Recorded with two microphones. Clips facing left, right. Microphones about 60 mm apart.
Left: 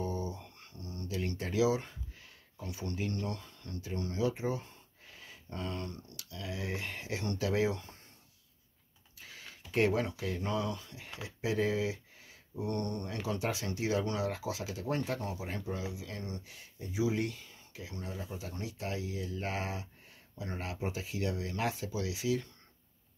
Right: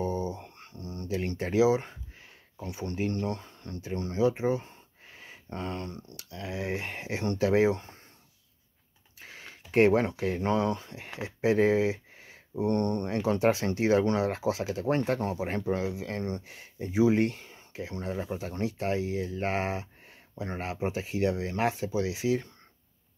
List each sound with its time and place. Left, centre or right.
0.0 s speech: right
9.2 s speech: right